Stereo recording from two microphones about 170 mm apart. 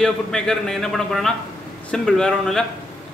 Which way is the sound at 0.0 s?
5° left (ahead or behind).